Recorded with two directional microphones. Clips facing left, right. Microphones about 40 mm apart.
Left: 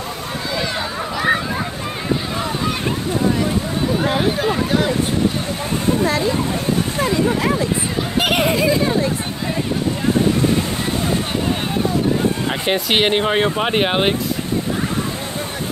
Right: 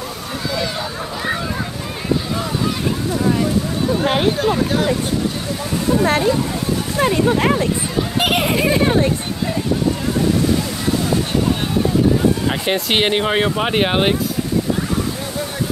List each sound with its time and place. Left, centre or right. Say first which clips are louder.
4.4 s speech: right 1 dB; centre
6.0 s speech: right 2 dB; right
8.2 s speech: left 1 dB; centre
8.5 s speech: right 1 dB; right
12.4 s speech: even; centre